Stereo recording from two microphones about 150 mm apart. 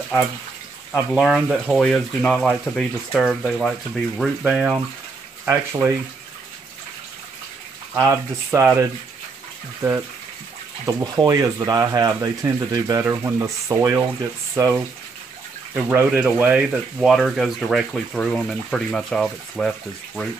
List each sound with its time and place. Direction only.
0.9 s speech: 5° right (ahead or behind)
7.9 s speech: 20° right (ahead or behind)
10.9 s speech: 25° right (ahead or behind); by 19.7 s centre (ahead or behind)